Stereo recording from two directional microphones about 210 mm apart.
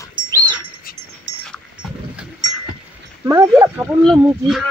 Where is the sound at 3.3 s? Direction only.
10° right (ahead or behind).